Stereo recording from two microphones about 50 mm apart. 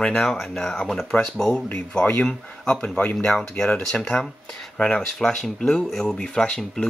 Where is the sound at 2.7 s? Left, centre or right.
Left.